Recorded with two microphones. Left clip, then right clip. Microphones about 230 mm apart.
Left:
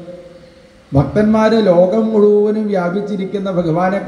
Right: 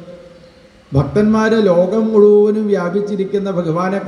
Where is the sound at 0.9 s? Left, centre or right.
Right.